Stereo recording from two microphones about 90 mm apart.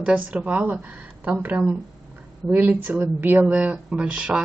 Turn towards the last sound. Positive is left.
turn(degrees=-10)  # may be behind; listen again after turning